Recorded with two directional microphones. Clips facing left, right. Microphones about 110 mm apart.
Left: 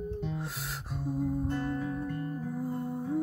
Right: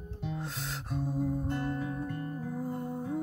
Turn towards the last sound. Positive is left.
turn(degrees=0)  # may be behind; listen again after turning